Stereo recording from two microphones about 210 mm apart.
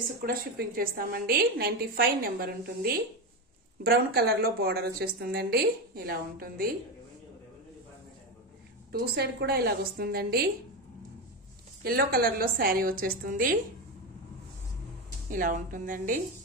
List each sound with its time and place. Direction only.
0.2 s a woman's voice: 45° right (ahead or behind)
8.9 s a woman's voice: 50° right (ahead or behind)
11.8 s a woman's voice: 45° right (ahead or behind)
15.3 s a woman's voice: 40° right (ahead or behind)